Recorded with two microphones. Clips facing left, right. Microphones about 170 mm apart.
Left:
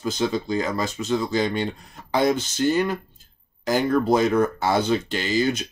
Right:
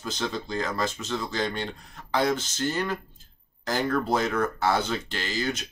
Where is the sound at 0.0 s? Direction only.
15° left (ahead or behind).